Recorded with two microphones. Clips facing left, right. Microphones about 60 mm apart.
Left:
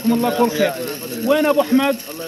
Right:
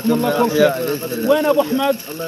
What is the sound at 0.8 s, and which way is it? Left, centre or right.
Speech, right.